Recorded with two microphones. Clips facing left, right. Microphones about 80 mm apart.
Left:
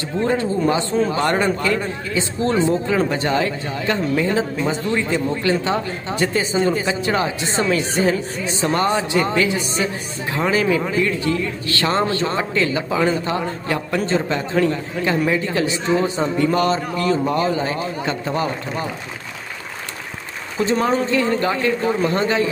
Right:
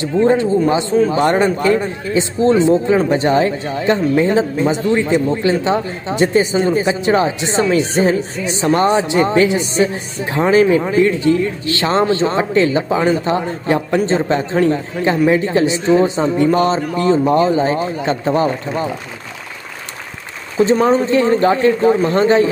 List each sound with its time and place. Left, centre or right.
0.0 s speech: right
20.8 s speech: right